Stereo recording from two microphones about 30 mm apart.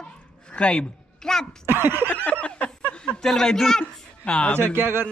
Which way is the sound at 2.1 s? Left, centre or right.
Left.